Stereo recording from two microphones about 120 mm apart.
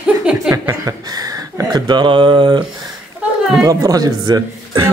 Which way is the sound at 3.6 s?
30° right (ahead or behind).